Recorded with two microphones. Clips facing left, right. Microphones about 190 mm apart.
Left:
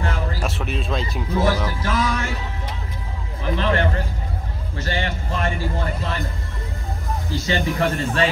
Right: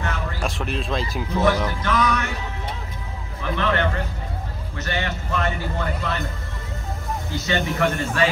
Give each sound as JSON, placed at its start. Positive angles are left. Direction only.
{"t": 0.0, "sound": "a sound", "side_deg": 30}
{"t": 0.4, "sound": "speech", "side_deg": 0}
{"t": 1.8, "sound": "a man's voice", "side_deg": 30}
{"t": 3.5, "sound": "a man's voice", "side_deg": 30}
{"t": 7.4, "sound": "a man's voice", "side_deg": 30}